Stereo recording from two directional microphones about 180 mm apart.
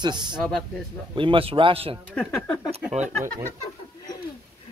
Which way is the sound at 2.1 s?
5° left (ahead or behind).